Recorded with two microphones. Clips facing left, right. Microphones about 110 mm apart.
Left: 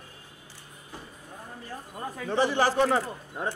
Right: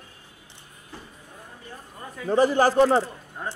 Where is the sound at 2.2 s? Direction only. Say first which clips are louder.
Right 5 dB; 40° right (ahead or behind).